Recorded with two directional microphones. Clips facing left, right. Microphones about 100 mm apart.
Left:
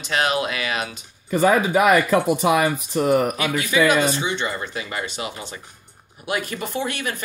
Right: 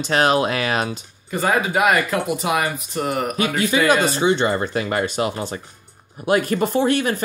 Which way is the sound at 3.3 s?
35° right (ahead or behind).